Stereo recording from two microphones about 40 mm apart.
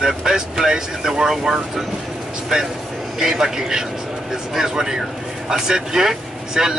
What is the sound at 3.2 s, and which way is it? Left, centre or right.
Speech, centre.